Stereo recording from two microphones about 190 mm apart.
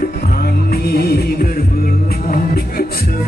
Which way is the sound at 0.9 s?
55° left (ahead or behind).